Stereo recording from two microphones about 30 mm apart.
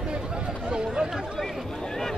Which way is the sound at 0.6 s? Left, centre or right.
Right.